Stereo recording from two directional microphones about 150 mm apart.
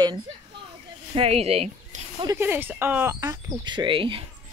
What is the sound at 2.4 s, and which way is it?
Speech, 15° right (ahead or behind).